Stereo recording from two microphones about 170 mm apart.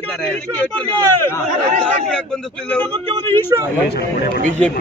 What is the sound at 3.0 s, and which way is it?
Speech, 35° right (ahead or behind).